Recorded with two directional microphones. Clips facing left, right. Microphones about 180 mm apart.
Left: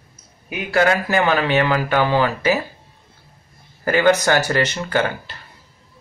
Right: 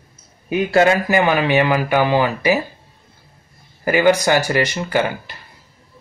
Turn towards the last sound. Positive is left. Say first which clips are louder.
# right 1 dB
turn(degrees=-10)  # may be behind; listen again after turning